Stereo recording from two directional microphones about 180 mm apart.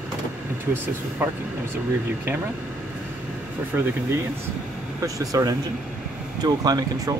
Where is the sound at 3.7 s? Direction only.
10° right (ahead or behind).